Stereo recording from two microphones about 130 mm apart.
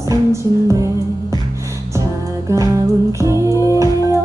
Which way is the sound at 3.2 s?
25° right (ahead or behind).